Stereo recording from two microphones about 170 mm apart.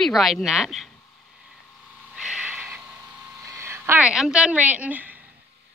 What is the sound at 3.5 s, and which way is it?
Speech, 15° right (ahead or behind).